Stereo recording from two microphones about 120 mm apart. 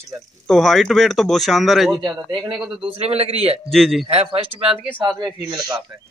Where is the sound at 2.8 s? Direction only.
60° right (ahead or behind).